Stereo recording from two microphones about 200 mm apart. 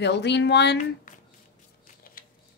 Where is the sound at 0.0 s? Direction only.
60° left (ahead or behind).